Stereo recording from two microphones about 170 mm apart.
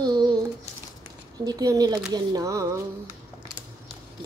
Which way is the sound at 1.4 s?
20° right (ahead or behind).